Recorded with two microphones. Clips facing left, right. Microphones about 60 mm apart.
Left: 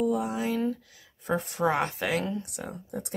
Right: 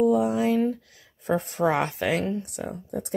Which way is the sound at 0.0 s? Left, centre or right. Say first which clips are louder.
Right 6 dB; right.